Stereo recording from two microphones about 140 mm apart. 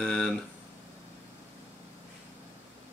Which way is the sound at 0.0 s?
5° left (ahead or behind).